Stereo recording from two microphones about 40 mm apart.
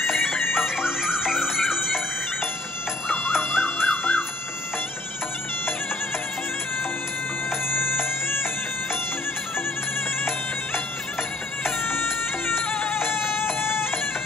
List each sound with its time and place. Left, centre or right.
0.0 s music: centre
3.1 s emergency vehicle: centre
7.6 s music: left
11.8 s music: left
12.6 s music: left
12.9 s music: left